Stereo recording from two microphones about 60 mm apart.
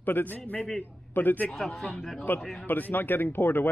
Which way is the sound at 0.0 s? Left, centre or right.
Left.